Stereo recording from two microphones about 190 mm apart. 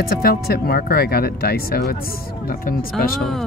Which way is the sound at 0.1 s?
55° left (ahead or behind).